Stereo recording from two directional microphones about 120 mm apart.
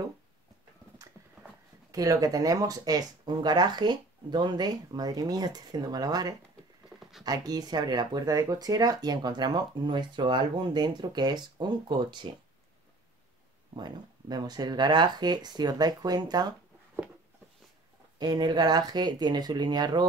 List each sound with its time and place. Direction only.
1.9 s speech: 30° right (ahead or behind)
7.0 s a sound: centre (ahead or behind)
7.2 s speech: 30° right (ahead or behind)
13.7 s speech: 35° right (ahead or behind)
18.2 s speech: 35° right (ahead or behind)